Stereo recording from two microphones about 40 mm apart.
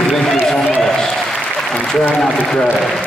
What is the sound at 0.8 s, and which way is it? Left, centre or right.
Applause, centre.